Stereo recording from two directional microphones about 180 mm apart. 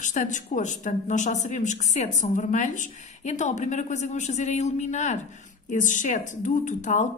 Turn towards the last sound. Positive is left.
turn(degrees=40)  # may be behind; listen again after turning